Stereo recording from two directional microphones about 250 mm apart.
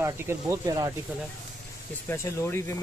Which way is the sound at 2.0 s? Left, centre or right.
Centre.